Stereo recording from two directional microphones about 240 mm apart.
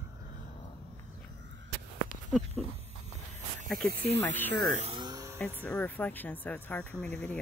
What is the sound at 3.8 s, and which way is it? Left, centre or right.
Speech, right.